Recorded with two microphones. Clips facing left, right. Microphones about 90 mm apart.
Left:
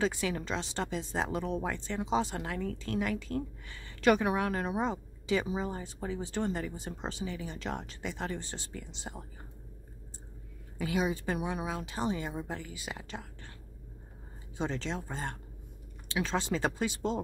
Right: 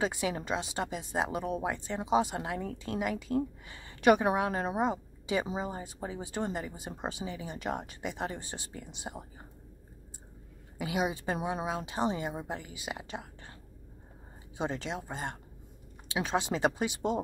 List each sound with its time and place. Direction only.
0.0 s speech: 15° right (ahead or behind)
10.8 s speech: 20° right (ahead or behind)
14.6 s speech: 15° right (ahead or behind)